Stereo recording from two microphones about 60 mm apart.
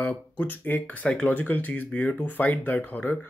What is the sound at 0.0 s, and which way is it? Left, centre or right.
Speech, left.